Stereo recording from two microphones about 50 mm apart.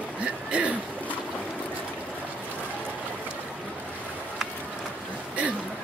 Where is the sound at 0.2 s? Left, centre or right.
Right.